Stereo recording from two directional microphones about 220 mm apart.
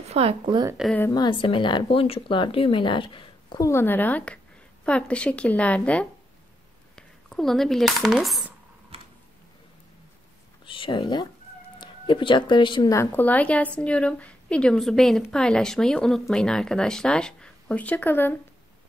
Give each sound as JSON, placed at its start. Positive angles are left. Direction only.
{"t": 0.1, "sound": "a woman's voice", "side_deg": -25}
{"t": 0.7, "sound": "a woman's voice", "side_deg": 0}
{"t": 1.0, "sound": "a woman's voice", "side_deg": 20}
{"t": 10.6, "sound": "a woman's voice", "side_deg": 20}